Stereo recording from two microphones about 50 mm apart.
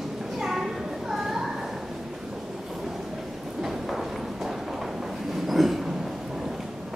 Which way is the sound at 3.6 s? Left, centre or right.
Centre.